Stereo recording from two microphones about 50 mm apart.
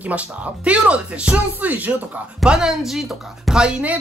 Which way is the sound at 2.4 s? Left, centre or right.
Centre.